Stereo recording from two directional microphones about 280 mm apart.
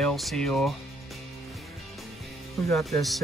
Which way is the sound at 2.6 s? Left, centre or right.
Centre.